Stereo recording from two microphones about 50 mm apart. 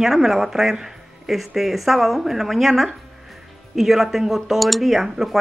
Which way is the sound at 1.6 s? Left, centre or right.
Centre.